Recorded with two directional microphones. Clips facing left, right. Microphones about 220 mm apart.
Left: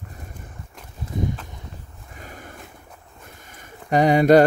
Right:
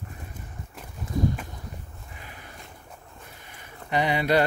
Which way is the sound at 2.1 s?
45° left (ahead or behind).